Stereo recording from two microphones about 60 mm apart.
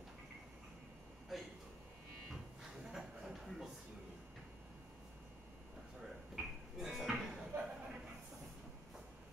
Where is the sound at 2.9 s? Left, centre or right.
Centre.